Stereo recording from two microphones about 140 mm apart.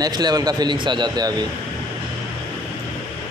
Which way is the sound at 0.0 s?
30° right (ahead or behind).